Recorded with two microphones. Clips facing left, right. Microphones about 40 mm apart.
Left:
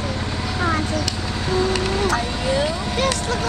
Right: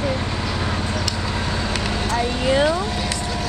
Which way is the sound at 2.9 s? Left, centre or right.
Left.